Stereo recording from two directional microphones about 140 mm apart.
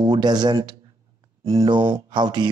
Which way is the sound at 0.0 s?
30° right (ahead or behind).